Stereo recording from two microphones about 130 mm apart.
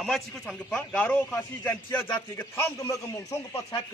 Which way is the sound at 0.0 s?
Centre (ahead or behind).